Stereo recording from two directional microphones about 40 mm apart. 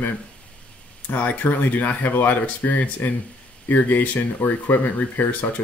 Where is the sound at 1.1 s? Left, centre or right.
Left.